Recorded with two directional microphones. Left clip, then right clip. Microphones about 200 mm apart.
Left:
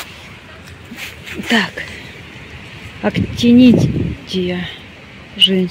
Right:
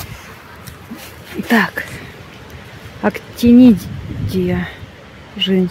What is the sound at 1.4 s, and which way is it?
Speech, 20° right (ahead or behind).